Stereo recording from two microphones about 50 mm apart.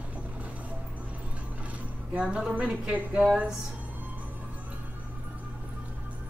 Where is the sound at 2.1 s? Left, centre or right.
Right.